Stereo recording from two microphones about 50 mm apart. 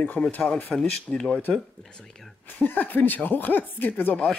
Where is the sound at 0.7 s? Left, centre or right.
Centre.